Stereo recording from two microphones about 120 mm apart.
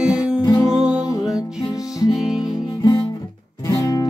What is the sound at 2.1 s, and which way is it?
Music, centre (ahead or behind).